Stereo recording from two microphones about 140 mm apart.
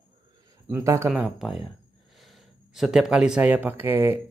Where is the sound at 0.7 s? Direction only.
20° right (ahead or behind).